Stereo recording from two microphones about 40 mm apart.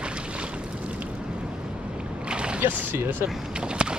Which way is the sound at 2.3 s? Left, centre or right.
Right.